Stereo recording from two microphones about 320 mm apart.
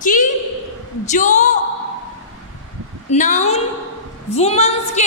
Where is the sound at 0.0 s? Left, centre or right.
Left.